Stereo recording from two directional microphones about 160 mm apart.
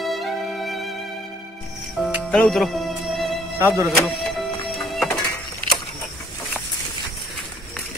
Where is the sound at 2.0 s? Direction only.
Centre (ahead or behind).